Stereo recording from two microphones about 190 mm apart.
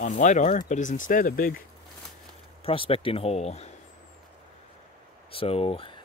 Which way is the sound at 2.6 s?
30° left (ahead or behind).